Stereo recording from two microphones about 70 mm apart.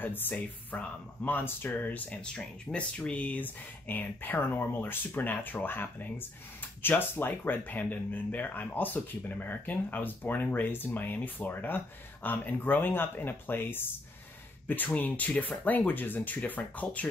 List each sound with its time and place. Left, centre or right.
0.0 s speech: left